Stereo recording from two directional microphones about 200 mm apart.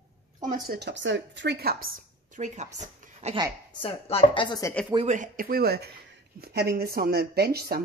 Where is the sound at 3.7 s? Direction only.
25° left (ahead or behind).